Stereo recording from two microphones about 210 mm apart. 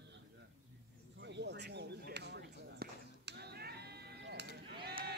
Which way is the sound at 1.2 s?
55° right (ahead or behind).